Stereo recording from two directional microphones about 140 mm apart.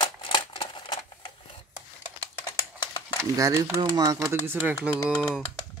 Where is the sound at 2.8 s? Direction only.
30° left (ahead or behind).